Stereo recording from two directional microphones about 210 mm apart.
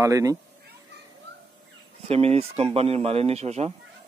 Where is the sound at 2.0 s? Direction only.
30° right (ahead or behind).